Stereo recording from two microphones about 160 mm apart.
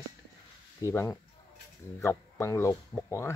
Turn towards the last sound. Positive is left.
turn(degrees=15)  # may be behind; listen again after turning